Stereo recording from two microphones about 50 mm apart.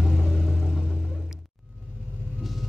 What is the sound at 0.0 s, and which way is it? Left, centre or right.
Vehicle, centre.